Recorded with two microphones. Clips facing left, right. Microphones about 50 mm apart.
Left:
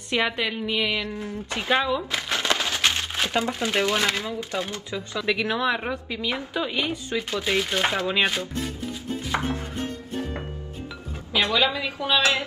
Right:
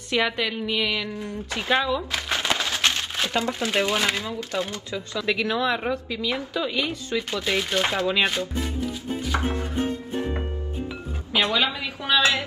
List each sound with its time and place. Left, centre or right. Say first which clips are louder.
0.1 s speech: right 1 dB; centre
1.1 s a woman's voice: even; left
1.7 s speech: even; centre
2.2 s a sound: even; centre
2.8 s crumpling: even; centre
3.7 s speech: even; centre
4.2 s a woman's voice: right 1 dB; centre
7.4 s speech: left 1 dB; centre
9.5 s music: right 3 dB; right
11.3 s a sound: even; right
12.0 s a woman's voice: right 1 dB; right